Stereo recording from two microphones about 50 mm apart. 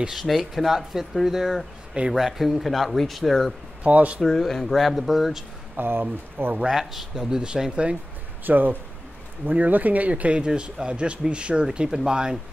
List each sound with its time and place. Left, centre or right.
0.1 s speech: centre
3.8 s speech: right
4.2 s speech: centre
5.8 s speech: right
6.7 s speech: centre; by 8.0 s right
8.5 s speech: right; by 12.4 s centre